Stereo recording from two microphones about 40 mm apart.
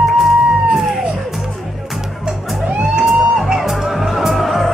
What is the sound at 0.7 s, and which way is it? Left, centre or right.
Music, centre.